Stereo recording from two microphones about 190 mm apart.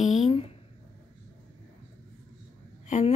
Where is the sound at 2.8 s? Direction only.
40° left (ahead or behind).